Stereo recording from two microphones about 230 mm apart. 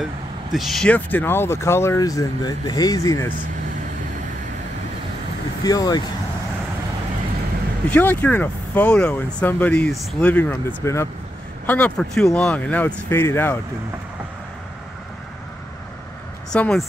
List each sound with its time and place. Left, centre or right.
0.0 s speech: centre
5.6 s speech: centre
7.9 s speech: centre
16.5 s speech: centre